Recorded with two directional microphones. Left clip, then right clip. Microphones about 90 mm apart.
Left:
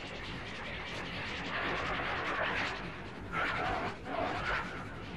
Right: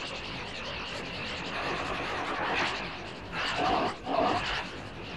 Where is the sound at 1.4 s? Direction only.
10° right (ahead or behind).